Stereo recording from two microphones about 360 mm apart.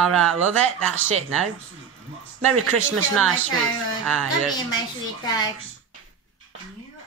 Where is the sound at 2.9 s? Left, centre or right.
Centre.